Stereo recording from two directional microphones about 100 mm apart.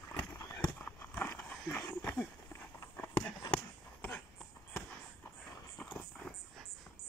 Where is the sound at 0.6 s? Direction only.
15° left (ahead or behind).